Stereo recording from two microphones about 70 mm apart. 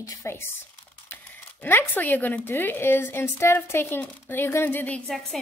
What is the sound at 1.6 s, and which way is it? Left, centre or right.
A woman's voice, left.